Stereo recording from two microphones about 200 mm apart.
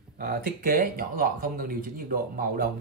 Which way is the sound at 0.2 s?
45° right (ahead or behind).